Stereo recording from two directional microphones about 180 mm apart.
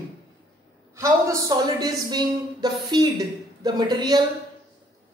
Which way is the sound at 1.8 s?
20° right (ahead or behind).